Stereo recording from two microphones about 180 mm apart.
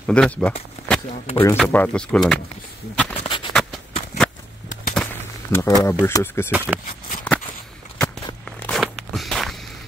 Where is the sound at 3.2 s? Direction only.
30° left (ahead or behind).